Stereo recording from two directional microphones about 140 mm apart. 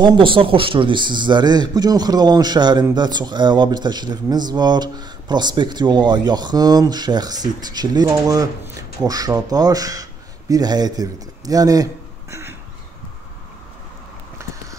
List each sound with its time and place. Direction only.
0.0 s a man's voice: 40° right (ahead or behind); by 12.5 s 20° right (ahead or behind)